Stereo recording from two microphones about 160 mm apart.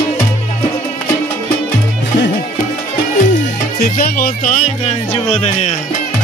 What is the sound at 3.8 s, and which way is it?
Speech, 65° left (ahead or behind).